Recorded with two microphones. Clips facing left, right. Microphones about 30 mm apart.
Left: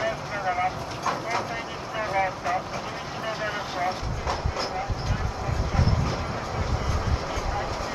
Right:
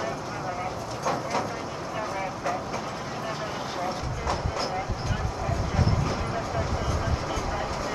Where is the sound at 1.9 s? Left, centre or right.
Left.